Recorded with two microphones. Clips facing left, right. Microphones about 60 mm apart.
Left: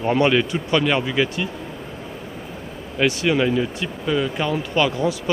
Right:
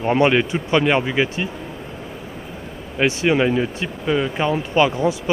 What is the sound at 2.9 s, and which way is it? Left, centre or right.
Speech, right.